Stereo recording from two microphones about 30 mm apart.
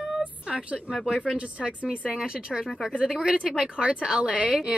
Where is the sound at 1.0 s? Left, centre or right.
Right.